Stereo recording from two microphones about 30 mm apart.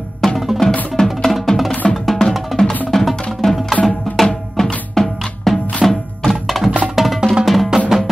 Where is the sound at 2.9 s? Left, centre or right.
Centre.